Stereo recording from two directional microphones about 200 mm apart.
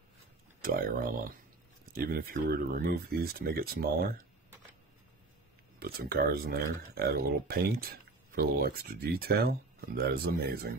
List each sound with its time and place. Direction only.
0.6 s speech: 45° right (ahead or behind)
5.8 s speech: 50° right (ahead or behind)